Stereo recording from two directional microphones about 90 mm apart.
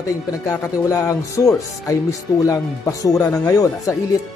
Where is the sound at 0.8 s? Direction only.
35° left (ahead or behind).